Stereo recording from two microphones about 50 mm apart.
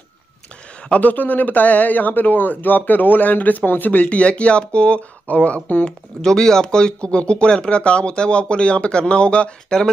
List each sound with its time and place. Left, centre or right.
1.0 s speech: left
4.2 s speech: left
5.9 s speech: centre